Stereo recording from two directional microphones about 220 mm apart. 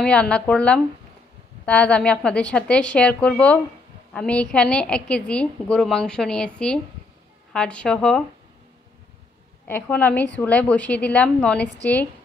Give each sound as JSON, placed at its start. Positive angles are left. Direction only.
{"t": 0.0, "sound": "a woman's voice", "side_deg": 5}
{"t": 9.7, "sound": "a woman's voice", "side_deg": 5}